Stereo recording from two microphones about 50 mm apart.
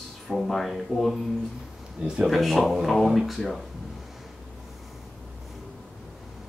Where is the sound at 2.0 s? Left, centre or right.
Centre.